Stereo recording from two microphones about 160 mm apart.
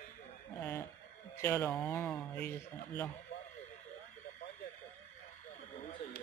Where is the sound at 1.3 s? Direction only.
15° left (ahead or behind).